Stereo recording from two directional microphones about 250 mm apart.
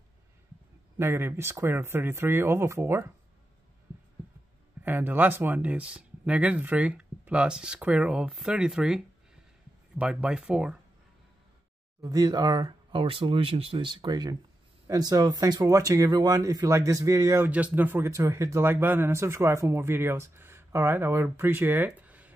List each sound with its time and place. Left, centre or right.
0.9 s speech: centre
4.8 s speech: centre
12.0 s speech: centre